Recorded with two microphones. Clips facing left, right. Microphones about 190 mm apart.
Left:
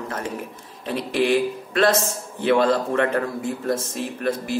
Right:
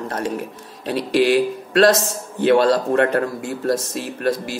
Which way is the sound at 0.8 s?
85° right.